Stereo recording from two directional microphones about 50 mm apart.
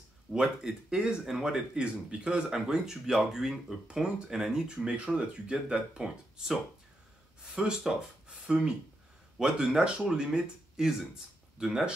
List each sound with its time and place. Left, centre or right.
0.3 s speech: centre